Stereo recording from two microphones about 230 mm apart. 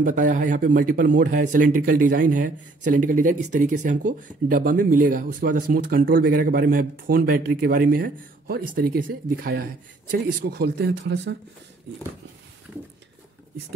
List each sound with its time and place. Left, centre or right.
0.0 s a man's voice: right